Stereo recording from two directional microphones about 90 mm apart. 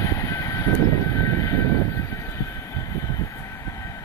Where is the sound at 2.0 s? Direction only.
35° left (ahead or behind).